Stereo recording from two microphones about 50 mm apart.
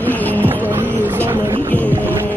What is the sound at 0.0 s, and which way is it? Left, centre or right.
Vehicle, left.